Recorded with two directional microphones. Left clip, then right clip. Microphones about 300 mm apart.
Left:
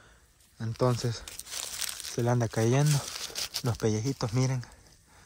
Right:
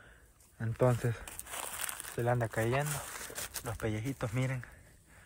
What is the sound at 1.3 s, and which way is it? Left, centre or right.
Crumpling, centre.